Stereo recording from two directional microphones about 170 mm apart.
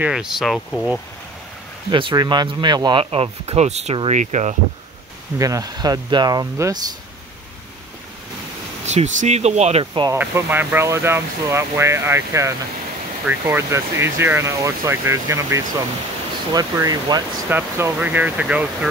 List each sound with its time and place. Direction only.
0.0 s speech: 5° right (ahead or behind)
1.9 s speech: 30° right (ahead or behind)
5.4 s speech: 20° right (ahead or behind)
8.8 s speech: 45° right (ahead or behind)
10.0 s speech: 15° right (ahead or behind)